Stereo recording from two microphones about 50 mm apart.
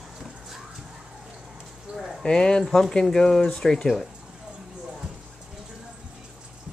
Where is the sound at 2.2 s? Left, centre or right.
Centre.